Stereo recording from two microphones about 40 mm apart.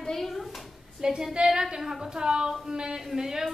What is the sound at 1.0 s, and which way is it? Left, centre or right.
Speech, centre.